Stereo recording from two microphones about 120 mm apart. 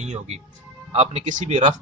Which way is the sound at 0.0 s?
70° right (ahead or behind).